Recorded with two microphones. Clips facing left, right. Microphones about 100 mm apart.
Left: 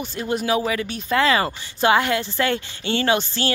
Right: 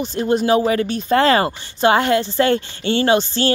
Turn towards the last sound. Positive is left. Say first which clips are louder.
# right 5 dB
turn(degrees=-30)  # may be behind; listen again after turning